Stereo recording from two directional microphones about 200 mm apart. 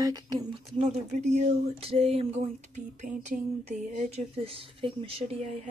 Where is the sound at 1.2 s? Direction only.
35° right (ahead or behind).